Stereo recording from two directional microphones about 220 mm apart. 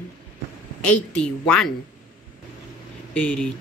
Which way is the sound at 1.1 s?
5° left (ahead or behind).